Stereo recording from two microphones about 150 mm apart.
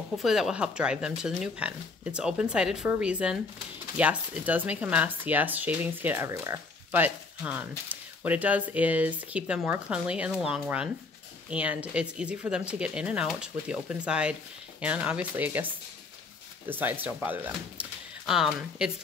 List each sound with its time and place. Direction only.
0.2 s speech: 5° right (ahead or behind)